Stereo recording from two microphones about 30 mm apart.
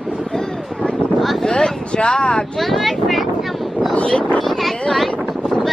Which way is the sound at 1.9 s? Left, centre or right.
Left.